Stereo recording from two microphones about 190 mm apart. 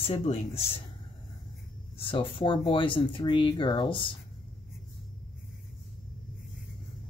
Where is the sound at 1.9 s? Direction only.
25° left (ahead or behind).